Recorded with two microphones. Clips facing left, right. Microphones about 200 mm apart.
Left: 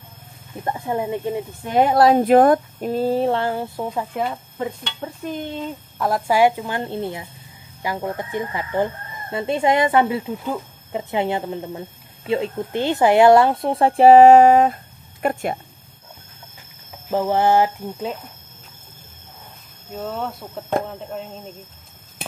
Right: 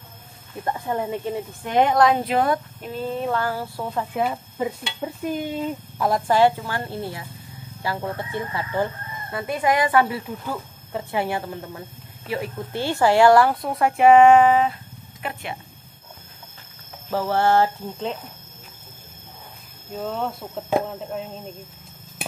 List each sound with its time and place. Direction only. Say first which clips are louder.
0.7 s a woman's voice: left 2 dB; 10° left (ahead or behind)
4.0 s dishes: even; 5° right (ahead or behind); by 7.2 s 20° left (ahead or behind)
7.8 s a woman's voice: left 2 dB; 15° left (ahead or behind); by 15.6 s 45° left (ahead or behind)
17.1 s speech: left 2 dB; 20° left (ahead or behind)
20.0 s dishes: even; centre (ahead or behind)